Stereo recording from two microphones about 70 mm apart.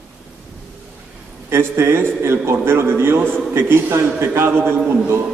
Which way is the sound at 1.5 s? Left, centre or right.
Right.